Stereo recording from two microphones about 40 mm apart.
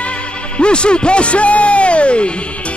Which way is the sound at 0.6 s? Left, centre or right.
Left.